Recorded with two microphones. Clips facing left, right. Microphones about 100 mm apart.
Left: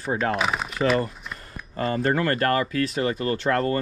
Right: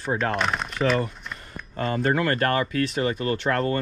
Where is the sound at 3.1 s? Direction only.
35° left (ahead or behind).